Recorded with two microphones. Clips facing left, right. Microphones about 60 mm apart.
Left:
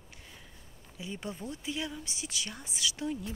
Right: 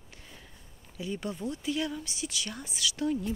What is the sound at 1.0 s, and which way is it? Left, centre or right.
Speech, centre.